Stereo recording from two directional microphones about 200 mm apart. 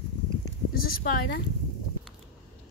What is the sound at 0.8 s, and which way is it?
Speech, 50° left (ahead or behind).